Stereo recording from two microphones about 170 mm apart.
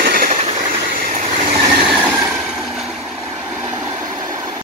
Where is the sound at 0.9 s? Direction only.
55° right (ahead or behind).